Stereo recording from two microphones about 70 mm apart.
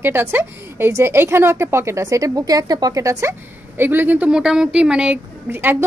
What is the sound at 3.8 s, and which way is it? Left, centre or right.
Speech, right.